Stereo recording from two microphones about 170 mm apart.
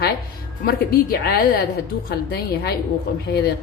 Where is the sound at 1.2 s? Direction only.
65° left (ahead or behind).